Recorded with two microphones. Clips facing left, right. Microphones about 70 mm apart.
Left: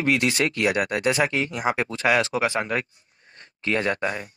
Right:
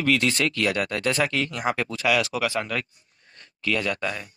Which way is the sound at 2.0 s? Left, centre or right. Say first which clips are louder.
Left 2 dB; left.